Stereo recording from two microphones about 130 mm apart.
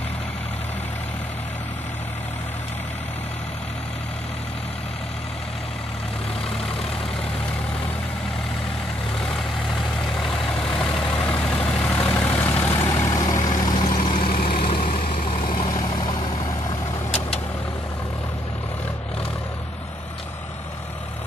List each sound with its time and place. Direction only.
10.2 s vehicle: 5° left (ahead or behind); by 16.2 s 35° left (ahead or behind)